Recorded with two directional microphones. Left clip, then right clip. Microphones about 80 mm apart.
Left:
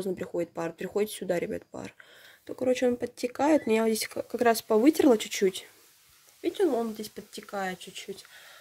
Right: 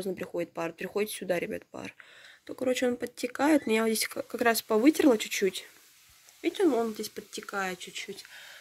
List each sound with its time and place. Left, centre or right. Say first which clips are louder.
0.0 s speech: left 2 dB; left
6.4 s speech: even; centre